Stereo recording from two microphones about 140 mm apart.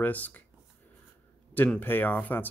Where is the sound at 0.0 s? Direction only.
10° left (ahead or behind).